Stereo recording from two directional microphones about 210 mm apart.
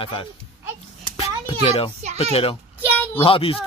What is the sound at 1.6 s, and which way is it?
Speech, 30° left (ahead or behind).